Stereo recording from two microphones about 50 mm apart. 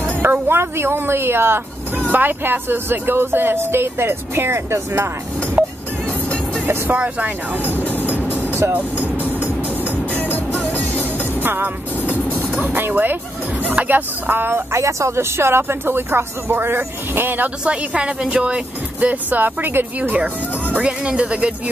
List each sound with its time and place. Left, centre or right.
0.2 s a sound: right
0.6 s speech: right
2.1 s speech: right
5.6 s music: right
6.9 s speech: right
8.7 s music: right
10.1 s music: left
11.4 s speech: right
14.4 s speech: right
14.8 s speech: right
17.6 s speech: right
20.0 s speech: right